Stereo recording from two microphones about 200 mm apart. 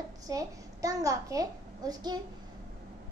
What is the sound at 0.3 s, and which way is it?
A woman's voice, 15° right (ahead or behind).